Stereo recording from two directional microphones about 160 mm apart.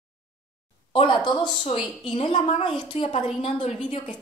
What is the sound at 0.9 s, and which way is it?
A woman's voice, 30° left (ahead or behind).